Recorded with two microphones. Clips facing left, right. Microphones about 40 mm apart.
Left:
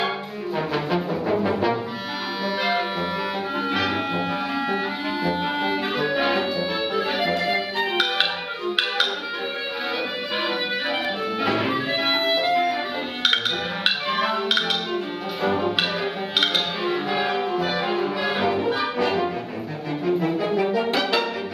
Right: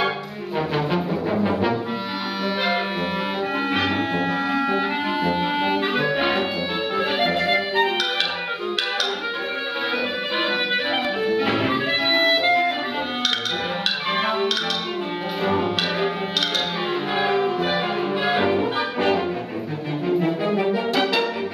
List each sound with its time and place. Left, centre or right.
0.6 s music: centre
3.7 s music: right
4.6 s clarinet: right
5.9 s music: centre
7.0 s music: right
12.2 s clarinet: right
17.6 s music: right
20.1 s music: centre